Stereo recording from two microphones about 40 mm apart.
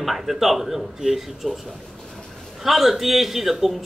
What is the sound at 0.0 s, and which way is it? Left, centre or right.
A man's voice, centre.